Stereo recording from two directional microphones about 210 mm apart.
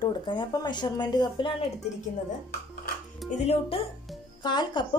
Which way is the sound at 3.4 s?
30° left (ahead or behind).